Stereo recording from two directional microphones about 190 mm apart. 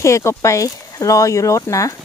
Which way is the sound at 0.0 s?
15° left (ahead or behind).